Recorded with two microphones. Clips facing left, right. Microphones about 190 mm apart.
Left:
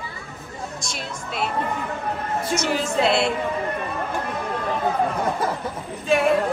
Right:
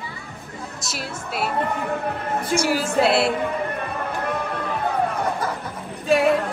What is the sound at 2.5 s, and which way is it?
Speech, 10° right (ahead or behind).